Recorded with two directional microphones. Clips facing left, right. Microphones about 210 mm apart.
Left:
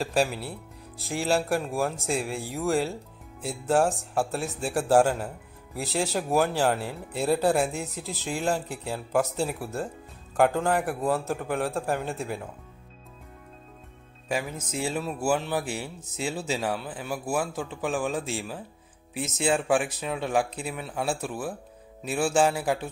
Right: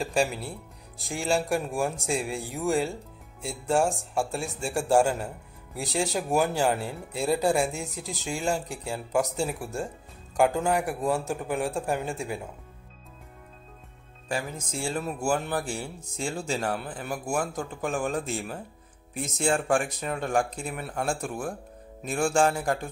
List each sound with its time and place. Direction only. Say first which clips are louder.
0.0 s speech: left 1 dB; centre (ahead or behind)
14.9 s music: left 1 dB; 5° left (ahead or behind)
15.5 s speech: left 1 dB; 5° left (ahead or behind)